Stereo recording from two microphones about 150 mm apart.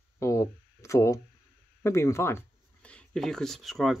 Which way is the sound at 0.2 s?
20° left (ahead or behind).